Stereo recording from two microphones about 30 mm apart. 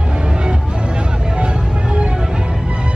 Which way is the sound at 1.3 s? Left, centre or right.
Right.